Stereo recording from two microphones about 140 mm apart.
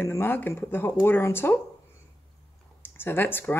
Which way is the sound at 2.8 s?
15° left (ahead or behind).